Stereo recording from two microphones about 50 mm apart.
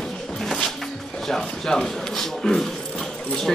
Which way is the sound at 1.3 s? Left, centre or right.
Centre.